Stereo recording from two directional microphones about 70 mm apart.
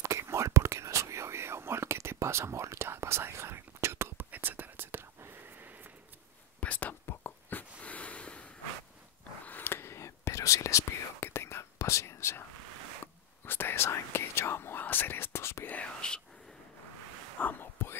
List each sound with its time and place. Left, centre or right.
0.0 s whispering: right
6.6 s whispering: left
7.1 s a sound: left
9.5 s whispering: left
15.7 s whispering: centre
17.4 s whispering: left